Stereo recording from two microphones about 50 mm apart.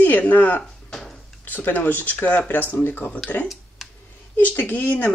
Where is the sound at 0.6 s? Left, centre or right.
Centre.